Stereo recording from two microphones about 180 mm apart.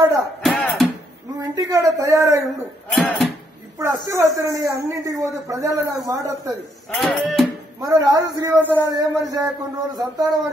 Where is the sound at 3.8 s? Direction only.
15° right (ahead or behind).